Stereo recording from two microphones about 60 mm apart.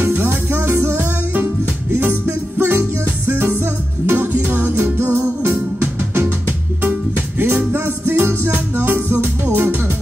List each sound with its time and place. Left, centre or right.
0.0 s music: right
5.4 s music: right